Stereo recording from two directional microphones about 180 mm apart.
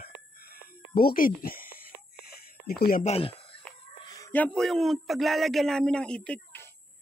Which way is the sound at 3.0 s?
30° left (ahead or behind).